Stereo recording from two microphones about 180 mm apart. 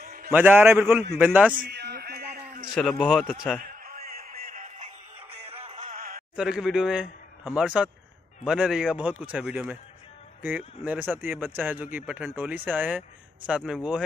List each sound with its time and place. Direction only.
0.0 s a sound: 55° right (ahead or behind)
0.3 s speech: 10° right (ahead or behind)
1.5 s a sound: 60° right (ahead or behind)
2.7 s a man's voice: centre (ahead or behind)
3.6 s music: 50° right (ahead or behind)
6.3 s a man's voice: 5° right (ahead or behind)